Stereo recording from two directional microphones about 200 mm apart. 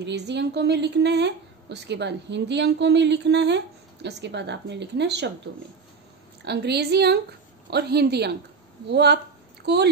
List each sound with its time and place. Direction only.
0.0 s a woman's voice: 60° right (ahead or behind)
6.4 s a woman's voice: 55° right (ahead or behind)